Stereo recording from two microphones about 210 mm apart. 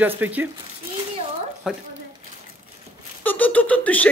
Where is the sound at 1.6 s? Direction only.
5° right (ahead or behind).